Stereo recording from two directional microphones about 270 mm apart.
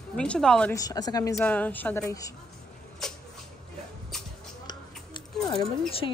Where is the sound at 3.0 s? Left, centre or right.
Centre.